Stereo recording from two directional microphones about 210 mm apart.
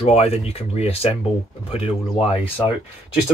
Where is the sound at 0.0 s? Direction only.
30° left (ahead or behind).